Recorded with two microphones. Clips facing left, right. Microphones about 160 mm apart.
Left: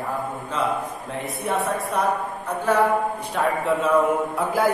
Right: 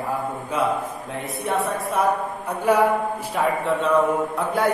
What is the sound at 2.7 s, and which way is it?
Speech, 10° right (ahead or behind).